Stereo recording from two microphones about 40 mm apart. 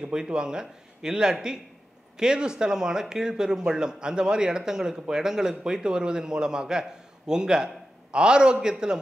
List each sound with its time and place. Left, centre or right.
0.0 s speech: centre